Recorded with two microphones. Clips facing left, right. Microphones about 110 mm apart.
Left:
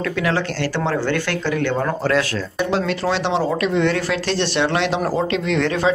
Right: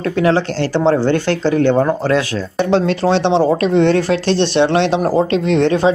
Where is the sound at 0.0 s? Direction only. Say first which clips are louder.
Right 6 dB; 30° right (ahead or behind).